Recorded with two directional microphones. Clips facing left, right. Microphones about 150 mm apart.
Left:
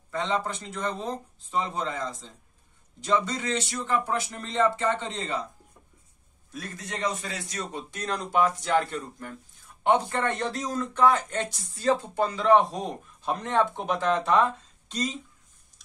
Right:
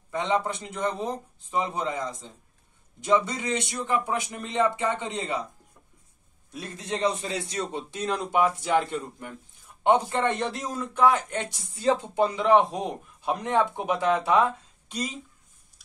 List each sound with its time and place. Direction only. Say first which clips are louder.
0.1 s a man's voice: right 2 dB; 15° right (ahead or behind)
6.5 s a man's voice: right 4 dB; 25° right (ahead or behind)
8.0 s a man's voice: right 1 dB; 10° right (ahead or behind)